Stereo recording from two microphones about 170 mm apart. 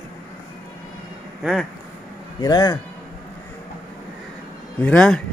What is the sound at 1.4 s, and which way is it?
Speech, centre (ahead or behind).